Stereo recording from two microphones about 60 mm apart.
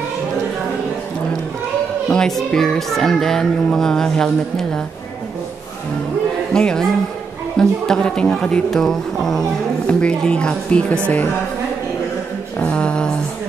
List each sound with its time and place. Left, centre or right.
2.0 s speech: centre
6.5 s speech: centre
8.6 s speech: centre
9.8 s speech: centre
12.5 s music: left